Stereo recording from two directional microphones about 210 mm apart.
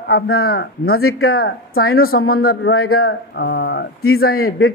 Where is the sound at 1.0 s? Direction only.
90° left.